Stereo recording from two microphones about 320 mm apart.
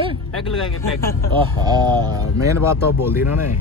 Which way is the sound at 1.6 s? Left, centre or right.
Centre.